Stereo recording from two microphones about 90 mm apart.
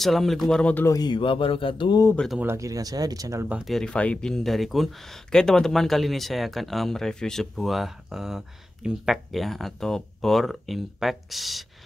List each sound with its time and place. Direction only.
0.0 s speech: centre (ahead or behind)
0.8 s speech: 45° left (ahead or behind)
1.1 s a sound: 75° left (ahead or behind)
2.4 s speech: 35° right (ahead or behind)
3.6 s speech: 5° left (ahead or behind)